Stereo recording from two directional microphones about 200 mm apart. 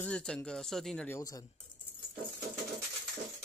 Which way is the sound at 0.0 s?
5° left (ahead or behind).